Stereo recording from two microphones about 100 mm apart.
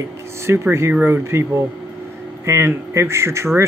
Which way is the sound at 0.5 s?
25° right (ahead or behind).